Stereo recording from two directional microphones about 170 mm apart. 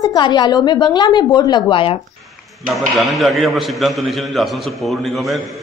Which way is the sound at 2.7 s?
Centre (ahead or behind).